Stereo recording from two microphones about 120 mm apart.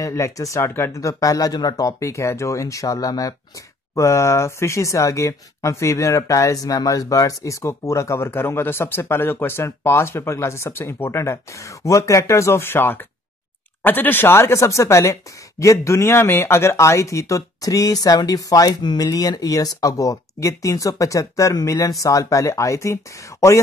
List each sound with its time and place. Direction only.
0.0 s speech: 25° left (ahead or behind)